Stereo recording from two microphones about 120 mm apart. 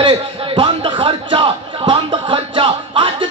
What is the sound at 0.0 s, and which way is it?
A man's voice, 45° right (ahead or behind).